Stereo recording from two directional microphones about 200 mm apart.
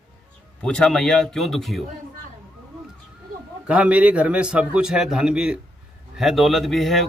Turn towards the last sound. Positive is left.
turn(degrees=0)  # may be behind; listen again after turning